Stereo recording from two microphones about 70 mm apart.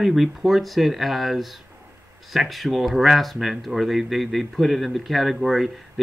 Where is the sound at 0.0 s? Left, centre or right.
Centre.